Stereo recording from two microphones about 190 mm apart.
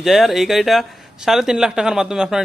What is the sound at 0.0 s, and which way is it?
A man's voice, centre (ahead or behind).